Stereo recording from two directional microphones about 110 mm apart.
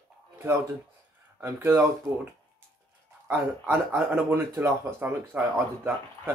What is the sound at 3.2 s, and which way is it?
Speech, 20° right (ahead or behind).